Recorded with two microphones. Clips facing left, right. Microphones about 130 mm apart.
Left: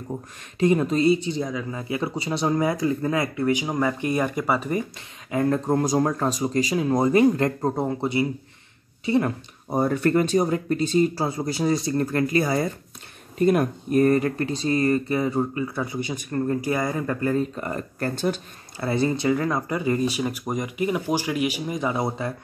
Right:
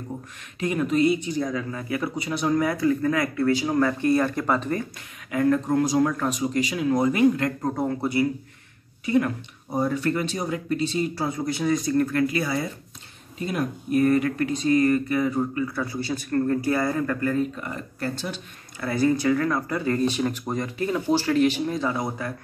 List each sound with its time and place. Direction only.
0.6 s speech: 30° left (ahead or behind)
1.5 s speech: 15° left (ahead or behind)
5.3 s speech: 30° left (ahead or behind)
9.7 s speech: 50° left (ahead or behind); by 17.5 s 25° left (ahead or behind)
17.6 s speech: 45° left (ahead or behind)
18.8 s speech: 25° left (ahead or behind)